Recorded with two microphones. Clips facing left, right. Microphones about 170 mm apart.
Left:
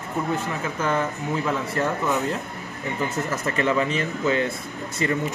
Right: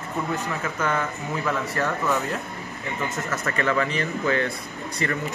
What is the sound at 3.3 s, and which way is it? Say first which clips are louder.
Speech: even; 25° left (ahead or behind).